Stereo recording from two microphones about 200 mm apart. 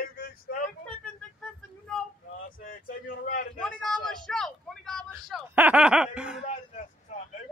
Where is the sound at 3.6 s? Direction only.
5° left (ahead or behind).